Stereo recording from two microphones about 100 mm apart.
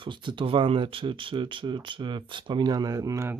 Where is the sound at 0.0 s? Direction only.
50° right (ahead or behind); by 3.3 s 30° right (ahead or behind).